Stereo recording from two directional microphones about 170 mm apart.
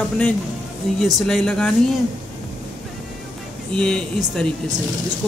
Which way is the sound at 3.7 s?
5° left (ahead or behind).